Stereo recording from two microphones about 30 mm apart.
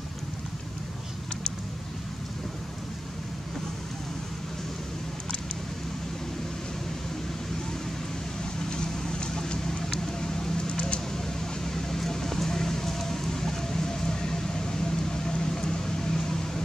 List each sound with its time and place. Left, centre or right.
9.7 s vehicle: centre
11.6 s vehicle: centre